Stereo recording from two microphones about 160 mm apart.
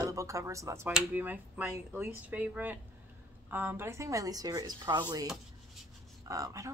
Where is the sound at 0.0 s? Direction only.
20° right (ahead or behind).